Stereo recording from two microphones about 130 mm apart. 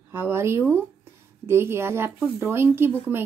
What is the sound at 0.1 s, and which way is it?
A woman's voice, 20° right (ahead or behind).